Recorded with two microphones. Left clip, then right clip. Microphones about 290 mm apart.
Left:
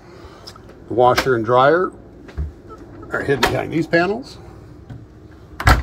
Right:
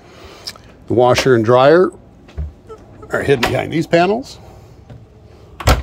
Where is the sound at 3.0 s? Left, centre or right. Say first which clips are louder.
Right 3 dB; right.